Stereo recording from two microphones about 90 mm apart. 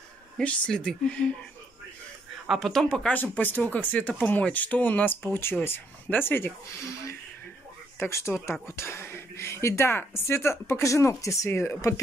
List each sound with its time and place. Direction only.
0.4 s speech: 10° left (ahead or behind)
2.4 s speech: centre (ahead or behind)
3.2 s speech: 20° left (ahead or behind)